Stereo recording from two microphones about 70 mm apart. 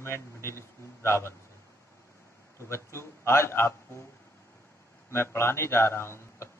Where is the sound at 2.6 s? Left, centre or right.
Left.